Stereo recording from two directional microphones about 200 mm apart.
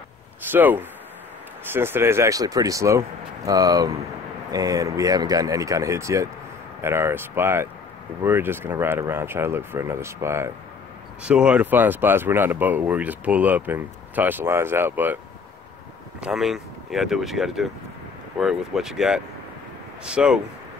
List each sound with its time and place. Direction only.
0.5 s speech: 10° right (ahead or behind)
16.2 s speech: centre (ahead or behind)